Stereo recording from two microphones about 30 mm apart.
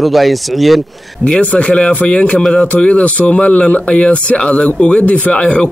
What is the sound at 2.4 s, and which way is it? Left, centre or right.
Speech, left.